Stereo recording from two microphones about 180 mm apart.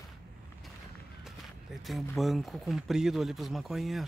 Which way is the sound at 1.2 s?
Centre (ahead or behind).